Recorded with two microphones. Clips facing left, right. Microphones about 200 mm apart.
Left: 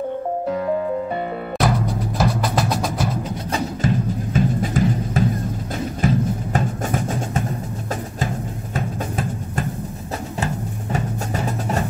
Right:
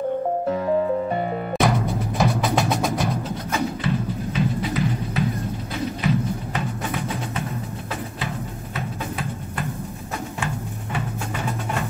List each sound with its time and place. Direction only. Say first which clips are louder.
1.6 s music: left 1 dB; centre (ahead or behind)
3.5 s music: left 2 dB; 45° left (ahead or behind)
8.7 s music: left 4 dB; 40° left (ahead or behind)